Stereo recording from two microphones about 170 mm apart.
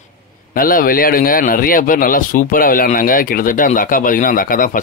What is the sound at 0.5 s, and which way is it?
A man's voice, 55° left (ahead or behind).